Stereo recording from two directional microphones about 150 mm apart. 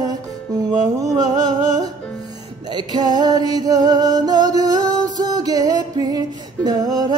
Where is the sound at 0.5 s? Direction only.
25° right (ahead or behind).